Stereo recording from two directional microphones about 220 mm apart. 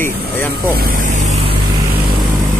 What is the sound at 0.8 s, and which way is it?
Vehicle, 40° right (ahead or behind).